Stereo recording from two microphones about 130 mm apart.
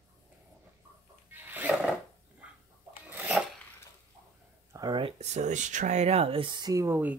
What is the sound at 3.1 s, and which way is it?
Filing, 10° right (ahead or behind).